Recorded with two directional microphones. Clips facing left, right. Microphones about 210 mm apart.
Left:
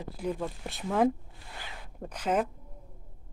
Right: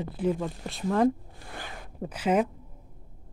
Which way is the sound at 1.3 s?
50° right (ahead or behind).